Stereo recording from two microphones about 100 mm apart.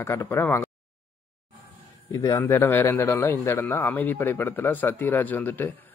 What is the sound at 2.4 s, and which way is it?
A man's voice, 20° left (ahead or behind).